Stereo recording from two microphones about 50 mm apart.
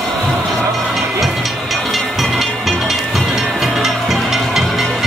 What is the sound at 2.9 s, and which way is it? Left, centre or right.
Music, centre.